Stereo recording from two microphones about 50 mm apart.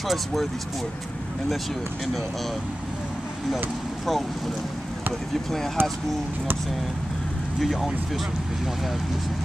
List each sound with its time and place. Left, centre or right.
0.1 s speech: centre
3.5 s speech: centre
5.8 s speech: right
7.6 s speech: centre